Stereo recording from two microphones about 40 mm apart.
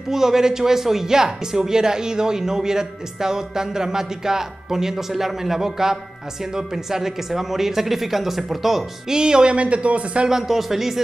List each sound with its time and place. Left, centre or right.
0.1 s speech: centre
9.1 s speech: centre
10.5 s speech: centre